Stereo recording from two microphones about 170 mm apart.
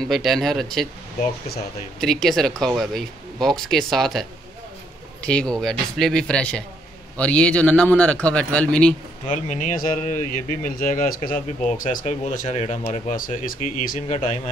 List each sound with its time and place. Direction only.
0.0 s speech: centre (ahead or behind)
2.0 s a man's voice: centre (ahead or behind)
9.3 s speech: 45° left (ahead or behind)